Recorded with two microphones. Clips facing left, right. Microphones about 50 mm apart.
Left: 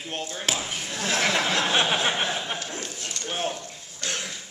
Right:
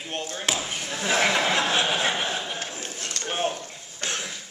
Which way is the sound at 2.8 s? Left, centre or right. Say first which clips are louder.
Right 1 dB; right.